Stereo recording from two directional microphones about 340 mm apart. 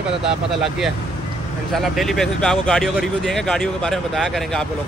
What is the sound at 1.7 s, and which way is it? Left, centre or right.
Speech, centre.